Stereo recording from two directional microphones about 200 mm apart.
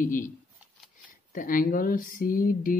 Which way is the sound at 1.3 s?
45° left (ahead or behind).